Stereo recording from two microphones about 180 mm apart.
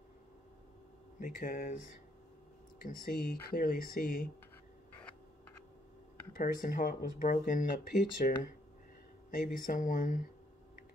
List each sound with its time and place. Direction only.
1.2 s speech: 50° left (ahead or behind)
3.1 s speech: 55° left (ahead or behind)
6.3 s speech: 50° left (ahead or behind)